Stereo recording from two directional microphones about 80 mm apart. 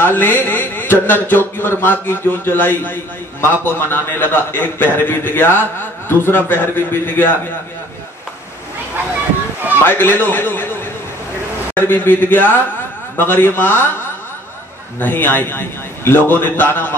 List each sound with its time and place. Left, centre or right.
0.0 s a man's voice: left
9.8 s a man's voice: left
15.0 s a man's voice: left